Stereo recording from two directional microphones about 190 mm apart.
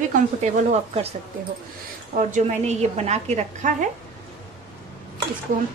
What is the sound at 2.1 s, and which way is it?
A woman's voice, 40° right (ahead or behind).